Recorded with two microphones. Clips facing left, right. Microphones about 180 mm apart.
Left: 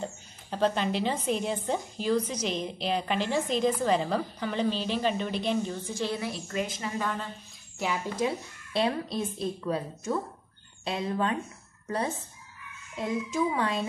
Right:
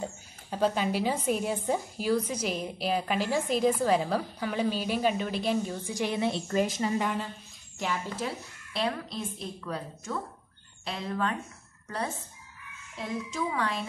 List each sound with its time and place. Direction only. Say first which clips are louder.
0.0 s a woman's voice: even; 10° right (ahead or behind); by 6.9 s 30° right (ahead or behind)
7.0 s a woman's voice: right 2 dB; 15° right (ahead or behind)
7.8 s speech: left 3 dB; 10° left (ahead or behind)
8.7 s a woman's voice: left 4 dB; 25° left (ahead or behind)
13.0 s a woman's voice: left 4 dB; 20° left (ahead or behind)